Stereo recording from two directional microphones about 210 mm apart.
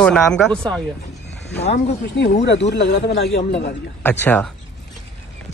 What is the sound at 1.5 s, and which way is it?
Speech, 55° left (ahead or behind).